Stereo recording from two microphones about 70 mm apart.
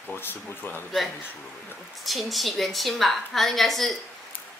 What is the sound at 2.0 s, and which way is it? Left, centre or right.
A woman's voice, centre.